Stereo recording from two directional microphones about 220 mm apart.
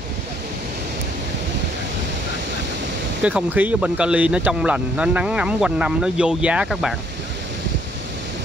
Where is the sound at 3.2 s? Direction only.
5° right (ahead or behind).